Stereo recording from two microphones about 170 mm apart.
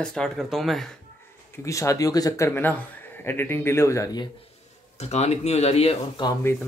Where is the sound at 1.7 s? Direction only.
20° left (ahead or behind).